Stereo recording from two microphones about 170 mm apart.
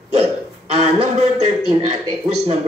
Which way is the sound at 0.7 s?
40° right (ahead or behind).